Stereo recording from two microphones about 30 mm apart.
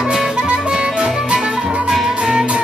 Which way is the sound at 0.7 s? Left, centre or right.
Right.